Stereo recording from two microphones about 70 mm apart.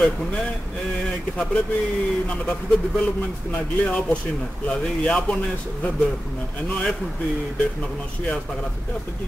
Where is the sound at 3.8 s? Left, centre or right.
Centre.